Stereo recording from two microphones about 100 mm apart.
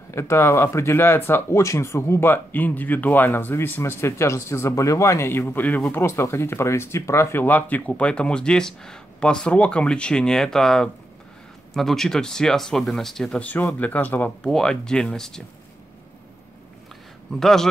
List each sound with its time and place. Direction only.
0.1 s speech: 25° left (ahead or behind); by 13.4 s 5° left (ahead or behind)
13.4 s speech: 20° left (ahead or behind)
14.4 s speech: 5° left (ahead or behind)
17.4 s speech: 5° left (ahead or behind)